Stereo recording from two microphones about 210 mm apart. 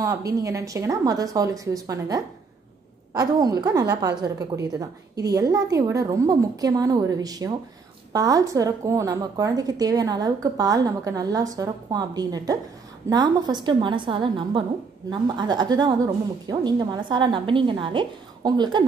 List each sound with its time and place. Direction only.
0.0 s a woman's voice: 15° right (ahead or behind)